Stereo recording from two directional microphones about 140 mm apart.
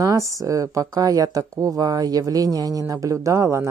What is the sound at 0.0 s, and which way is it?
Speech, 20° right (ahead or behind).